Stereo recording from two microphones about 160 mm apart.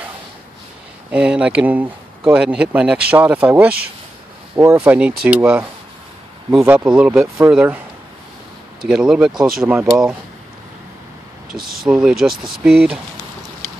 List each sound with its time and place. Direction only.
1.1 s speech: 5° right (ahead or behind)
8.8 s speech: 5° right (ahead or behind)
11.5 s speech: 65° right (ahead or behind)
11.8 s speech: 5° right (ahead or behind)